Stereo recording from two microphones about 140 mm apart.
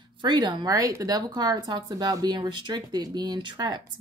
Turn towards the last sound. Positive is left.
turn(degrees=-30)  # may be behind; listen again after turning